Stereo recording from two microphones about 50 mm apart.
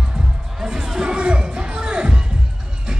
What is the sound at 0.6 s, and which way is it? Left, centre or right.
Music, centre.